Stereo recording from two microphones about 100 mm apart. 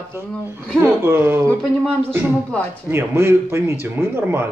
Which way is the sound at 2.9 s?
25° right (ahead or behind).